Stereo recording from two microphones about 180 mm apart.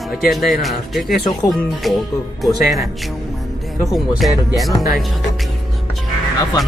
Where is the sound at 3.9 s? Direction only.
Centre (ahead or behind).